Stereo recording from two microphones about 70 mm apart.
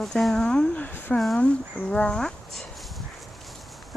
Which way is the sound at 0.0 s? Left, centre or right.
Centre.